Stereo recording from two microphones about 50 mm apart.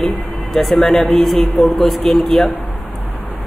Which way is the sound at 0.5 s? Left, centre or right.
Centre.